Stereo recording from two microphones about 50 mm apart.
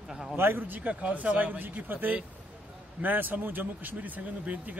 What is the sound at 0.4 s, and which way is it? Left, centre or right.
A man's voice, right.